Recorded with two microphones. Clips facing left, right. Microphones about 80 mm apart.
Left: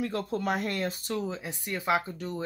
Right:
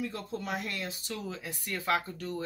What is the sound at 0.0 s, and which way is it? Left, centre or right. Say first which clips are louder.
Speech: left 6 dB; left.